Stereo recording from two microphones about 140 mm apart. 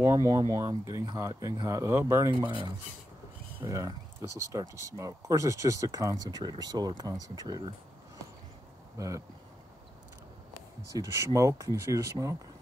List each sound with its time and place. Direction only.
0.0 s speech: 20° right (ahead or behind)
3.6 s speech: 25° right (ahead or behind)
8.9 s speech: 25° right (ahead or behind)
11.0 s speech: 25° right (ahead or behind)